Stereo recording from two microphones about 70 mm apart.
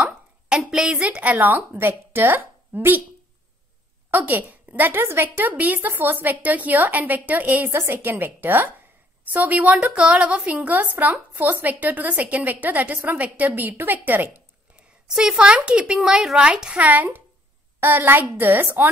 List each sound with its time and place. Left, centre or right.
0.0 s speech: centre; by 3.0 s right
4.1 s a woman's voice: right
7.7 s a woman's voice: right
14.8 s a woman's voice: centre; by 18.9 s right